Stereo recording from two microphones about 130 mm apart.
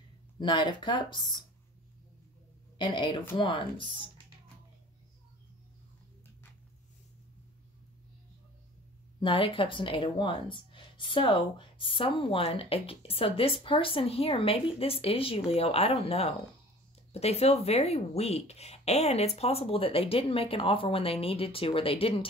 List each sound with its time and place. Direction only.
0.4 s speech: 35° left (ahead or behind)
2.8 s speech: 40° left (ahead or behind)
9.2 s speech: 45° left (ahead or behind)